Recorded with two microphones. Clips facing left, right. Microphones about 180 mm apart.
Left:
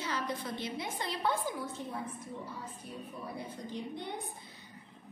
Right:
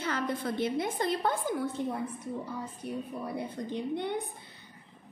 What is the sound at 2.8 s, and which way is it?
A woman's voice, 65° right (ahead or behind).